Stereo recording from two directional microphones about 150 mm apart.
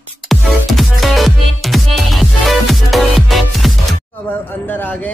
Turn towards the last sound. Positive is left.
turn(degrees=10)  # may be behind; listen again after turning